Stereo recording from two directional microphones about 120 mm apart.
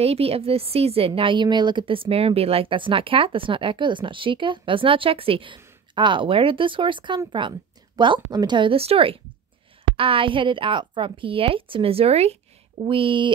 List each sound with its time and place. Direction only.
0.0 s a woman's voice: 55° right (ahead or behind)
12.8 s a woman's voice: 45° right (ahead or behind)